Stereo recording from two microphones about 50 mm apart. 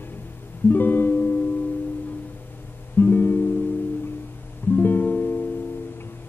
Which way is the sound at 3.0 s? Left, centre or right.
Left.